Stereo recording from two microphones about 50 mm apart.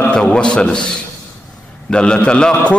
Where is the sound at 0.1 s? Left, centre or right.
Centre.